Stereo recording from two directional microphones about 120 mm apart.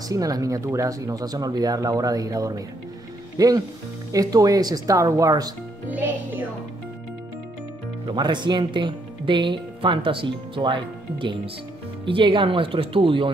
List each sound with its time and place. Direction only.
0.1 s speech: 30° right (ahead or behind)
5.9 s music: 15° right (ahead or behind)
8.1 s speech: 40° right (ahead or behind)